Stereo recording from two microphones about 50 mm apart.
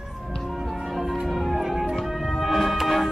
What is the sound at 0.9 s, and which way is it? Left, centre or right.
Music, centre.